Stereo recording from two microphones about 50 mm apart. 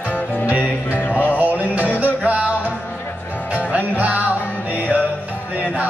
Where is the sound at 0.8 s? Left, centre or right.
Left.